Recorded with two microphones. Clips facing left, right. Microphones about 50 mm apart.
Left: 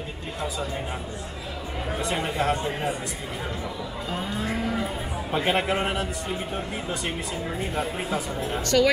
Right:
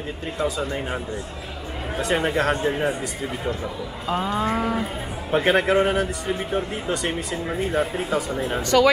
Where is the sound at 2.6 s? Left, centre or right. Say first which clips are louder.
Right 5 dB; right.